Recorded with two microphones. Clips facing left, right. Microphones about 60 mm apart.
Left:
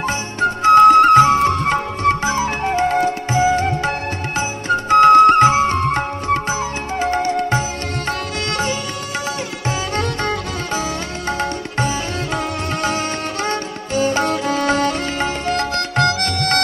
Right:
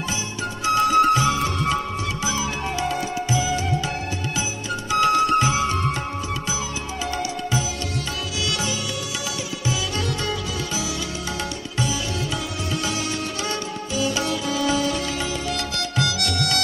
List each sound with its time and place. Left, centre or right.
0.4 s music: left
12.8 s music: left